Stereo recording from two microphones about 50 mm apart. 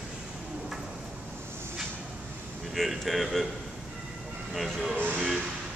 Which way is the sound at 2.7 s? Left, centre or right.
Centre.